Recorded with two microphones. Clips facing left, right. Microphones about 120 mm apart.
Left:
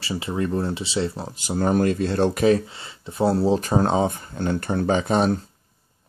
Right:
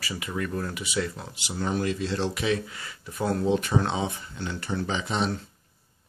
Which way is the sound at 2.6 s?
25° left (ahead or behind).